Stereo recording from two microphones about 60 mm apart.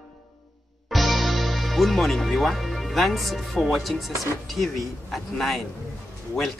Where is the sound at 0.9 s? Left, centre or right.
Centre.